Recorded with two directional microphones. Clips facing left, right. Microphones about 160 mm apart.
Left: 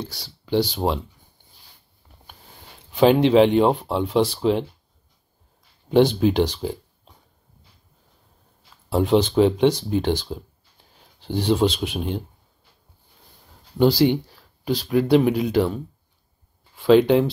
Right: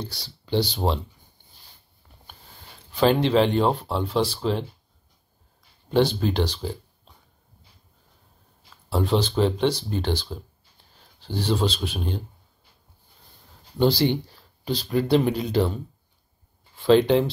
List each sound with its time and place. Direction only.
0.0 s speech: 10° left (ahead or behind)
2.9 s speech: 15° left (ahead or behind)
5.9 s speech: 15° left (ahead or behind)
8.9 s speech: 15° left (ahead or behind)
13.7 s speech: 10° left (ahead or behind)